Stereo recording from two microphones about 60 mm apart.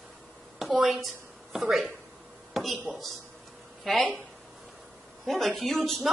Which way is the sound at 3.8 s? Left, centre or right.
Centre.